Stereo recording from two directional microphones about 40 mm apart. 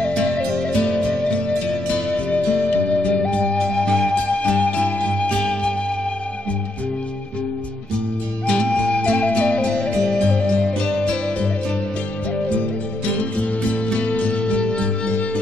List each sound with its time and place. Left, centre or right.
0.0 s music: left
4.4 s music: left
8.5 s music: left
13.4 s music: left